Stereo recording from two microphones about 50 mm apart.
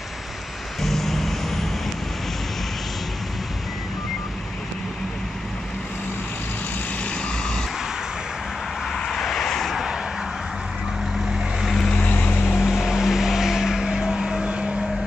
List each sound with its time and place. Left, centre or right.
0.8 s vehicle: centre
8.9 s vehicle: centre
11.6 s vehicle: centre
12.1 s vehicle: left
12.5 s vehicle: centre